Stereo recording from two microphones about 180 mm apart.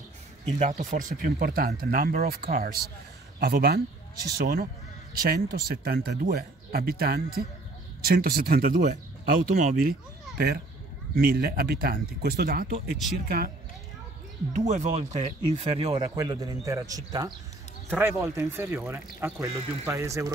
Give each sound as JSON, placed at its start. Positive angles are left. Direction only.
{"t": 0.6, "sound": "speech", "side_deg": -45}
{"t": 10.3, "sound": "speech", "side_deg": -60}
{"t": 14.5, "sound": "speech", "side_deg": -40}